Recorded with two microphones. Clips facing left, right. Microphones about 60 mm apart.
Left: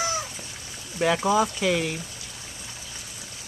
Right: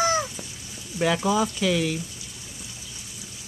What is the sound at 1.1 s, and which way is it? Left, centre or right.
Speech, left.